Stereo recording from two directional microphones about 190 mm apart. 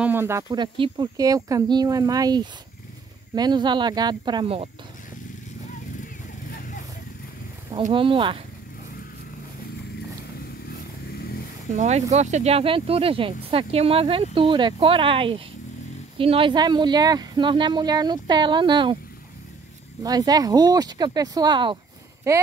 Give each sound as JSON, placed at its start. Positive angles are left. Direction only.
{"t": 0.0, "sound": "speech", "side_deg": -10}
{"t": 7.9, "sound": "speech", "side_deg": -25}
{"t": 11.7, "sound": "speech", "side_deg": -35}
{"t": 20.0, "sound": "speech", "side_deg": -20}